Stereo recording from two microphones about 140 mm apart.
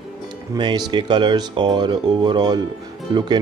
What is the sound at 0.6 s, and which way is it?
A man's voice, 35° right (ahead or behind).